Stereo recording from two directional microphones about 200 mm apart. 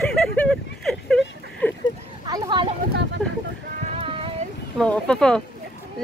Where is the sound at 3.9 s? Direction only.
25° right (ahead or behind).